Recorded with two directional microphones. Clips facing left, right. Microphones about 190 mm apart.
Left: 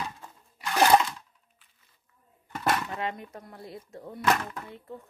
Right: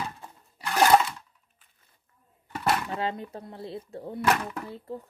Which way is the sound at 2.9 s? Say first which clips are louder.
Right 3 dB; 30° right (ahead or behind).